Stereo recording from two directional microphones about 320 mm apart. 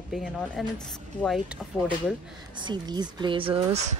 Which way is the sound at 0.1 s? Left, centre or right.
Centre.